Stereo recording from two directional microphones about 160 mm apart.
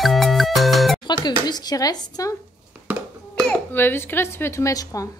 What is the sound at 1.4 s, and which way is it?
Speech, 25° left (ahead or behind).